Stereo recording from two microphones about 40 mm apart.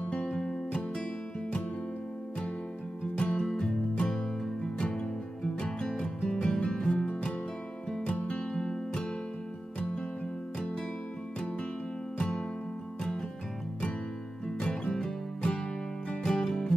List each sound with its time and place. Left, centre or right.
0.1 s music: left
3.2 s music: left
12.2 s music: left
14.6 s music: left